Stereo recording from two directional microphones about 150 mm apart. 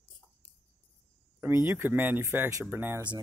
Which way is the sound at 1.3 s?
15° right (ahead or behind).